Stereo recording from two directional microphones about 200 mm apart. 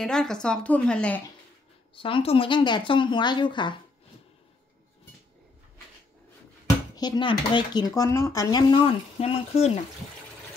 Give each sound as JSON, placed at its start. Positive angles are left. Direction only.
{"t": 0.0, "sound": "a woman's voice", "side_deg": 5}
{"t": 2.0, "sound": "speech", "side_deg": 25}
{"t": 7.0, "sound": "speech", "side_deg": 20}